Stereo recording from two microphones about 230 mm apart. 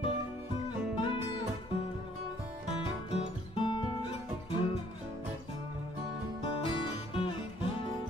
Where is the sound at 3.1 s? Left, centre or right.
Left.